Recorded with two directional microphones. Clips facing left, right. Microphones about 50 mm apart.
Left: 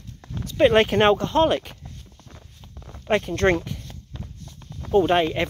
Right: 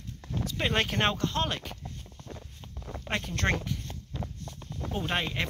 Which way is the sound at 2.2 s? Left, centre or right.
Centre.